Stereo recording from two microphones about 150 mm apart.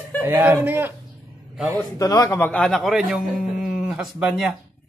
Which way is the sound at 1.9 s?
25° left (ahead or behind).